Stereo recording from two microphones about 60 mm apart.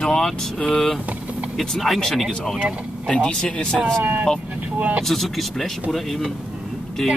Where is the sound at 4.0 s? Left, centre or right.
Right.